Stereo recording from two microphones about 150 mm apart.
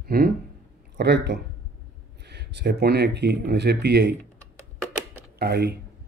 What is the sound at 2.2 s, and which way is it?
Speech, 90° right.